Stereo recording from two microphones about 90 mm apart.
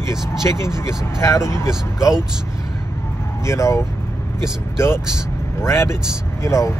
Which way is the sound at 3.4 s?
35° left (ahead or behind).